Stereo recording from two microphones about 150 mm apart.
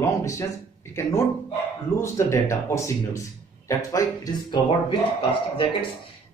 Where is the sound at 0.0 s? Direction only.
20° left (ahead or behind).